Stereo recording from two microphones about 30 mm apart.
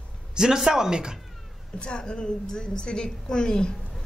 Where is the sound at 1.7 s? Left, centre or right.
Left.